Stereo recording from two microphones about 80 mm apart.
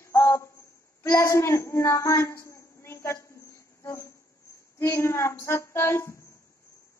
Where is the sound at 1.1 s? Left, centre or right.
Left.